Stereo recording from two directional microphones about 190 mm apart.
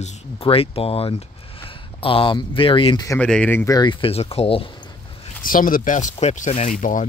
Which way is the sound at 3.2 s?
5° left (ahead or behind).